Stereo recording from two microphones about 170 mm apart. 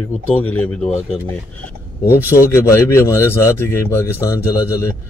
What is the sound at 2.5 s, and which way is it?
Speech, 15° left (ahead or behind).